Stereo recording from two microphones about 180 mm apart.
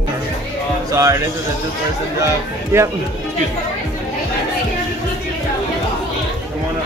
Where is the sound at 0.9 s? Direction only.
15° right (ahead or behind).